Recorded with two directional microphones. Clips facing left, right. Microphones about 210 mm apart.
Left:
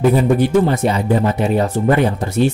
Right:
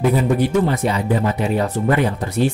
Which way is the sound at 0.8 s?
25° left (ahead or behind).